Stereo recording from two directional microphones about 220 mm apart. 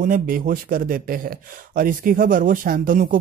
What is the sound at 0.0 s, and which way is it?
Speech, 40° right (ahead or behind).